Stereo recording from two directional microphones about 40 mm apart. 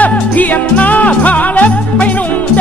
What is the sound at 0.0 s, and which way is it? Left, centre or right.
Music, left.